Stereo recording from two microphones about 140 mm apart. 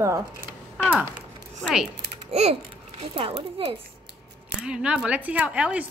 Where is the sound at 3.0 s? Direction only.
40° right (ahead or behind).